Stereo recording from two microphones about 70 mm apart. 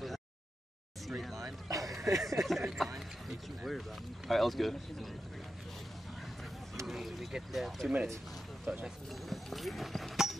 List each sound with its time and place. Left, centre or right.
1.0 s speech: centre
1.4 s speech: right
1.9 s a sound: centre
2.2 s speech: centre
6.9 s speech: centre